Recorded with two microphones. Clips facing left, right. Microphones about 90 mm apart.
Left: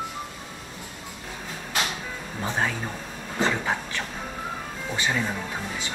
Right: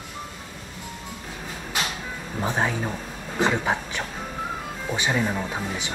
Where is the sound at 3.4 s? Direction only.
15° right (ahead or behind).